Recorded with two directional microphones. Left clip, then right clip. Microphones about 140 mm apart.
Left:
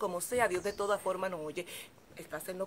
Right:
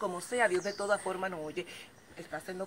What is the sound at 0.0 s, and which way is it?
Speech, 30° left (ahead or behind).